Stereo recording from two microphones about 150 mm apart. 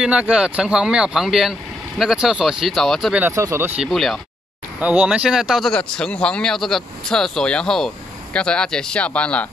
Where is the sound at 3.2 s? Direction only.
20° right (ahead or behind).